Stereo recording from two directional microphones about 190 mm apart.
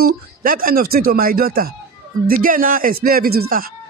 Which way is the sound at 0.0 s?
50° right (ahead or behind).